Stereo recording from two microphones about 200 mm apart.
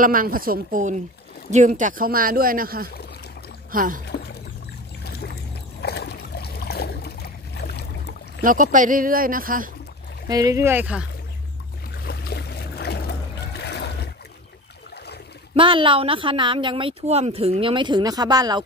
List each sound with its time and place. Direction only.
0.0 s speech: 45° right (ahead or behind)
5.0 s boat: 50° left (ahead or behind)
8.4 s speech: 40° right (ahead or behind)
10.2 s speech: 15° right (ahead or behind)
12.0 s trickle: 50° left (ahead or behind)
15.5 s speech: 25° right (ahead or behind)